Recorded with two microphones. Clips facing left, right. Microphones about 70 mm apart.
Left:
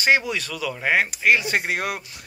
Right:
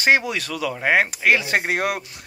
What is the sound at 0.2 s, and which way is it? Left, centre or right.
Speech, right.